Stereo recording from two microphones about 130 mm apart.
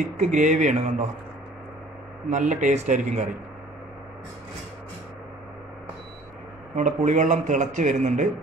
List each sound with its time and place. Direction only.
0.0 s a man's voice: 65° right (ahead or behind)
2.3 s a man's voice: 70° right (ahead or behind)
6.7 s a man's voice: 70° right (ahead or behind)